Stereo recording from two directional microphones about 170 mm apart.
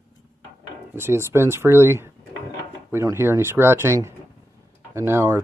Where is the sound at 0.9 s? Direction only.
15° right (ahead or behind).